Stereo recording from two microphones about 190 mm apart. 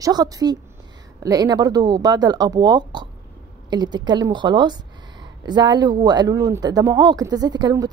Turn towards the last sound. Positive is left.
turn(degrees=-20)  # may be behind; listen again after turning